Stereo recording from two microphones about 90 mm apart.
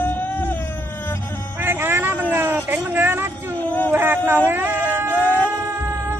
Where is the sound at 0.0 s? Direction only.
25° left (ahead or behind).